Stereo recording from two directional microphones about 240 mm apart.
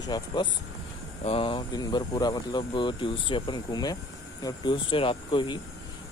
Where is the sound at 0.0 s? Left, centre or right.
Centre.